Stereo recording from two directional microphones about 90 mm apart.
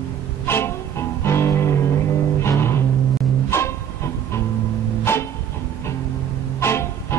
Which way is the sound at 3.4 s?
30° left (ahead or behind).